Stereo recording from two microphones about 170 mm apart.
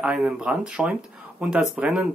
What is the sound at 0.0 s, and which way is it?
Speech, 5° right (ahead or behind).